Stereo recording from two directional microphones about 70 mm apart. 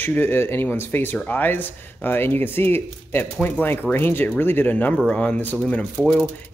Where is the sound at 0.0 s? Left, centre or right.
Left.